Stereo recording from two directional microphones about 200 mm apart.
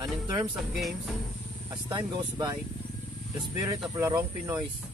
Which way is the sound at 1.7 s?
20° right (ahead or behind).